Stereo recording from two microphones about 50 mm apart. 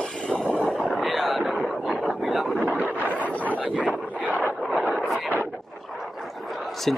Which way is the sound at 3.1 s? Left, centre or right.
Left.